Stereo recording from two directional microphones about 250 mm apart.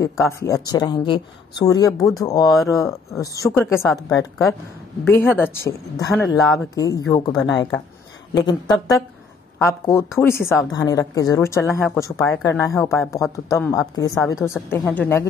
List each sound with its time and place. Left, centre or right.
0.0 s speech: centre
5.0 s speech: centre
6.4 s speech: centre
6.7 s speech: centre